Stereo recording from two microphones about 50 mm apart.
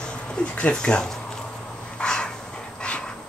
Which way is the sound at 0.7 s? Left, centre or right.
Centre.